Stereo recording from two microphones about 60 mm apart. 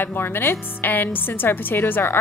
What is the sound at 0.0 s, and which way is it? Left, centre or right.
A woman's voice, left.